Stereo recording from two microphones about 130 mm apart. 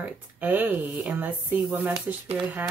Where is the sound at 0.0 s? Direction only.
15° right (ahead or behind).